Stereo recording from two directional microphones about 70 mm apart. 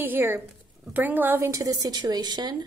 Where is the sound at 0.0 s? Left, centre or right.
Right.